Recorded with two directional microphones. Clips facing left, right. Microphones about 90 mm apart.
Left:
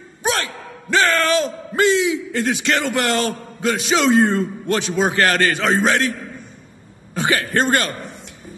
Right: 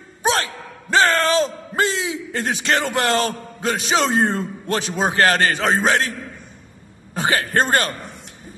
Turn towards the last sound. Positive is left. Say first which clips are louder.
# even
turn(degrees=-35)  # may be behind; listen again after turning